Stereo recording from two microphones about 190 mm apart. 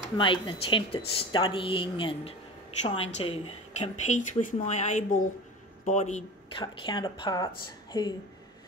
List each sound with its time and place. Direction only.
0.2 s speech: 25° left (ahead or behind)
6.5 s speech: 25° left (ahead or behind)